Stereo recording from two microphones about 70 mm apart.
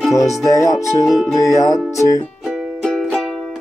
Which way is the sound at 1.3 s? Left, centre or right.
Left.